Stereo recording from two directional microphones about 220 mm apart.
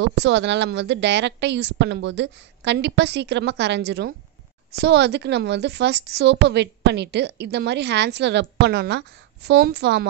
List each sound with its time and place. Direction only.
0.0 s a woman's voice: 55° right (ahead or behind)